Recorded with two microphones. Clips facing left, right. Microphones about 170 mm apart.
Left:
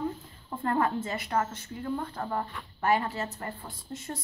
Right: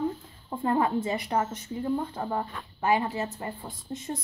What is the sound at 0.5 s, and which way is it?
Speech, 15° right (ahead or behind).